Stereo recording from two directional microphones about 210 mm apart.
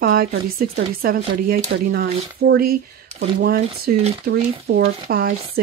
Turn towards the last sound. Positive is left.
turn(degrees=-45)  # may be behind; listen again after turning